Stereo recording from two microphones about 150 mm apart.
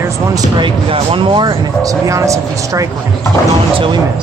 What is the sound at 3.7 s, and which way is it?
Speech, 35° right (ahead or behind).